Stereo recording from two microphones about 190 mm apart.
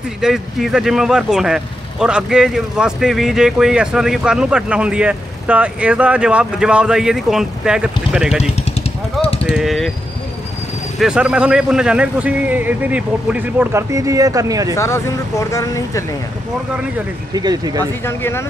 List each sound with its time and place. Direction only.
0.2 s speech: centre (ahead or behind)
9.2 s a sound: 30° left (ahead or behind)
9.5 s speech: centre (ahead or behind)
11.0 s a man's voice: 5° right (ahead or behind)
14.8 s speech: 15° left (ahead or behind)
17.3 s speech: 20° right (ahead or behind)
18.0 s speech: 15° left (ahead or behind)